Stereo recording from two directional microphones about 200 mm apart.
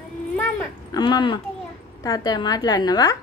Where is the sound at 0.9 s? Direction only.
20° left (ahead or behind).